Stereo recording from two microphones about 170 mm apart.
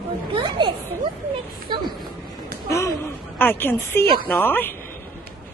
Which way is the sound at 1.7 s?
25° right (ahead or behind).